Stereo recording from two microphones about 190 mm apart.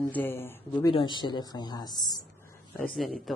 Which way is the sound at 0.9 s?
25° left (ahead or behind).